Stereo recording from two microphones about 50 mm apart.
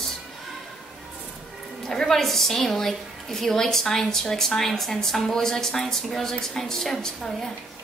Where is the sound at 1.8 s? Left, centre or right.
Centre.